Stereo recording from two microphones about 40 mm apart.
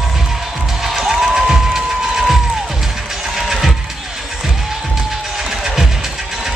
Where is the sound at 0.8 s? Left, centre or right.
Centre.